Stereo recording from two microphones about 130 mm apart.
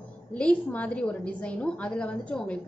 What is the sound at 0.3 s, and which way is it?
A woman's voice, 10° left (ahead or behind).